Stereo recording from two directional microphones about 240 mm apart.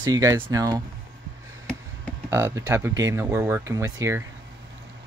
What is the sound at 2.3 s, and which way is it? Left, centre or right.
Speech, centre.